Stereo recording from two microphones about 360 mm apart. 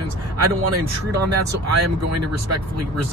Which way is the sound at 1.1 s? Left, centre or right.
Right.